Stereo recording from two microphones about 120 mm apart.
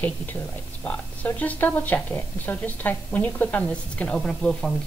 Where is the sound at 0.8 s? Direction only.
15° left (ahead or behind).